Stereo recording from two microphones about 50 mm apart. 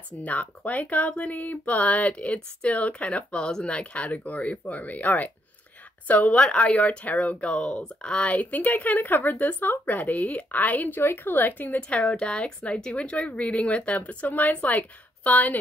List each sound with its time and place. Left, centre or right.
0.2 s speech: left
11.0 s speech: left
11.9 s speech: left